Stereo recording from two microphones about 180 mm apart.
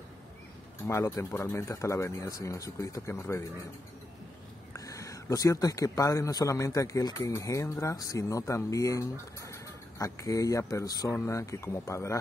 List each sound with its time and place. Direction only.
0.8 s speech: 15° left (ahead or behind)
4.7 s speech: 20° left (ahead or behind)